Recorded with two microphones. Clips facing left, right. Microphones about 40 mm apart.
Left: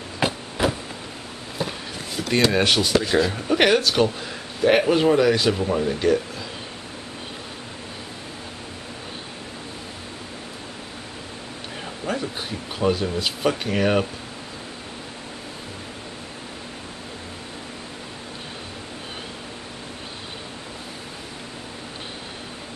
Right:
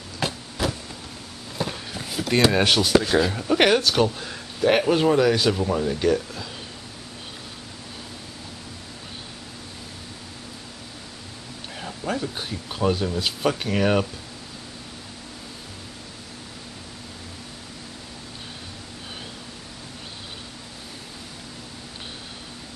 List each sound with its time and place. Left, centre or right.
0.2 s a sound: left
1.6 s speech: centre
11.8 s speech: centre